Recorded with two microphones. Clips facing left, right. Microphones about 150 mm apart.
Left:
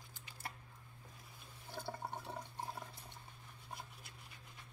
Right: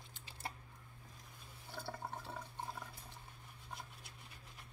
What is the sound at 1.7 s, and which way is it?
Water, 25° left (ahead or behind).